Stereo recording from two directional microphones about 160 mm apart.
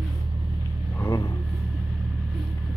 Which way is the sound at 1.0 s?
25° left (ahead or behind).